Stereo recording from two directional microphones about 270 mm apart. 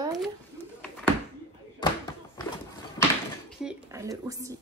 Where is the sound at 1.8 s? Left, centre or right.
Centre.